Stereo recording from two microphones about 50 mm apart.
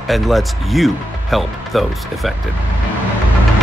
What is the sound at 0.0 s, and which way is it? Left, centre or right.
Speech, centre.